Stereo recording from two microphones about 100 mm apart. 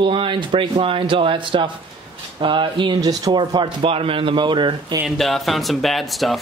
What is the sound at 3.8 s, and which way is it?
Speech, 70° right (ahead or behind).